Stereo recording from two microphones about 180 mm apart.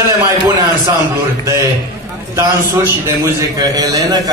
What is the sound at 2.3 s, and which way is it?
A man's voice, 15° right (ahead or behind).